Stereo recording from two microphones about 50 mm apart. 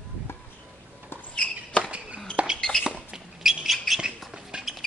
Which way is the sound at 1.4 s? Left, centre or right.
Left.